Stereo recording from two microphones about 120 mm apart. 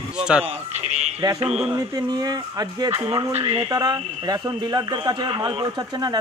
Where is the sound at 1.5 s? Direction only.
5° right (ahead or behind).